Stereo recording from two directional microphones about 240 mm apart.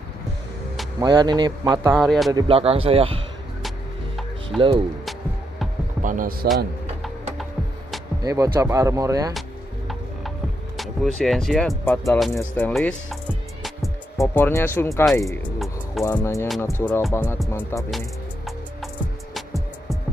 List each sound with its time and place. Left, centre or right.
1.0 s speech: centre
2.0 s speech: centre
2.3 s speech: right
4.6 s speech: right
6.0 s speech: right
8.2 s speech: centre
11.1 s speech: centre
12.4 s music: centre
14.2 s speech: centre
16.0 s music: centre
17.9 s music: centre